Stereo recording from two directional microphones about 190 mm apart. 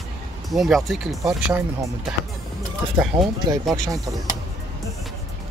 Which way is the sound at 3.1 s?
25° right (ahead or behind).